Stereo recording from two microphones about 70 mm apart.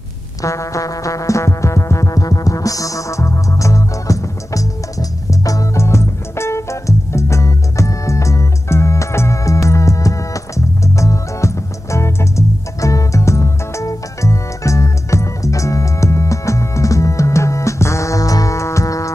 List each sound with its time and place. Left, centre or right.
0.4 s music: left
5.8 s music: left